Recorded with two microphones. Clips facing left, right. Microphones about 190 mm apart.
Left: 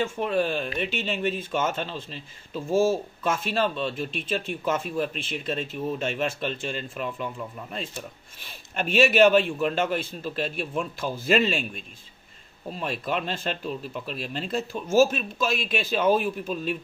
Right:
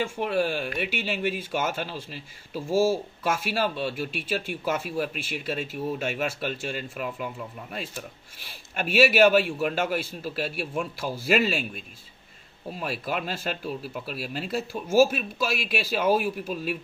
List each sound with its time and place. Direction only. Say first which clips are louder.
0.0 s speech: left 1 dB; 10° right (ahead or behind)